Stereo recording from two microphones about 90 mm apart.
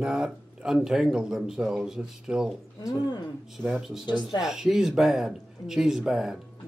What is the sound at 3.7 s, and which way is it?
Speech, 5° right (ahead or behind).